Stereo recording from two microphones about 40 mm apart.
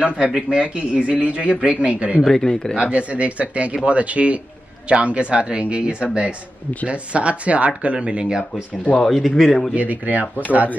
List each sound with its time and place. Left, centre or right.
0.0 s speech: right
2.2 s speech: centre
2.8 s speech: right
8.9 s speech: centre
9.8 s speech: right